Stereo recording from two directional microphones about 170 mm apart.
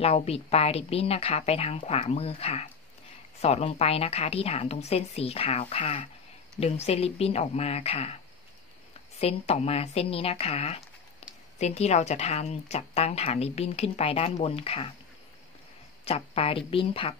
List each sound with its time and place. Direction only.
0.0 s a woman's voice: 35° left (ahead or behind)
9.2 s a woman's voice: 35° left (ahead or behind)
16.1 s a woman's voice: 35° left (ahead or behind)